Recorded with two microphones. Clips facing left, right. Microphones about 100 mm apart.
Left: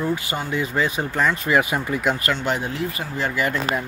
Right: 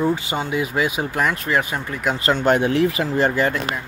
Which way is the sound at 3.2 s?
35° right (ahead or behind).